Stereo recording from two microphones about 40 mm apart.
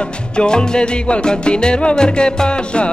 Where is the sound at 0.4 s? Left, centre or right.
Left.